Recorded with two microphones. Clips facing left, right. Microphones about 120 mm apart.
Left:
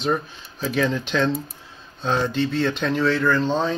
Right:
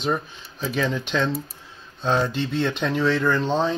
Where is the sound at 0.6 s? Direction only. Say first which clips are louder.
Left 2 dB; centre (ahead or behind).